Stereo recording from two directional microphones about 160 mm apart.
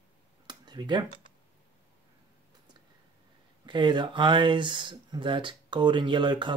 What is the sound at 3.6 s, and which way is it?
Speech, 30° right (ahead or behind).